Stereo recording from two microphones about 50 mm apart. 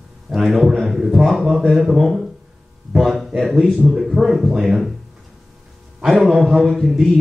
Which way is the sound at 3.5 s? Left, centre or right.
Centre.